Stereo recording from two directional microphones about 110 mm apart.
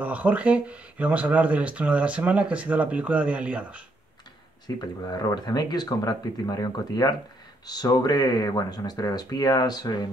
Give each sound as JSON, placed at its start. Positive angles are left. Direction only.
{"t": 0.0, "sound": "speech", "side_deg": -15}
{"t": 4.6, "sound": "speech", "side_deg": 35}